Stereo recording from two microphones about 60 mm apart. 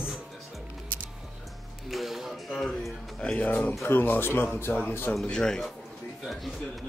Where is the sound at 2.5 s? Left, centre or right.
Centre.